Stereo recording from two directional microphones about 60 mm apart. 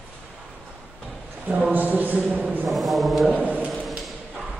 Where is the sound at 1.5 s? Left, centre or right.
Right.